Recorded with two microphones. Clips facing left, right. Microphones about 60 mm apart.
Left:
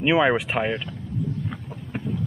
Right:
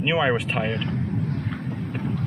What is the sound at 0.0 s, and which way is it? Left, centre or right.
Speech, centre.